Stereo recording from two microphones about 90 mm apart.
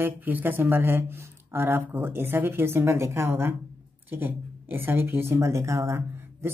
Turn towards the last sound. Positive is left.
turn(degrees=-30)  # may be behind; listen again after turning